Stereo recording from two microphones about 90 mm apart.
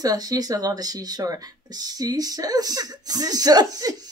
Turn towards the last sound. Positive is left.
turn(degrees=-45)  # may be behind; listen again after turning